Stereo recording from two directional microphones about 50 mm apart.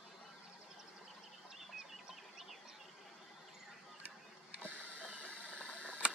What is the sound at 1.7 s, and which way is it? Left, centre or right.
Chicken, centre.